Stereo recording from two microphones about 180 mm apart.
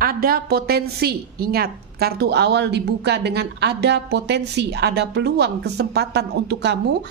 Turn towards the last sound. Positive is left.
turn(degrees=-70)  # may be behind; listen again after turning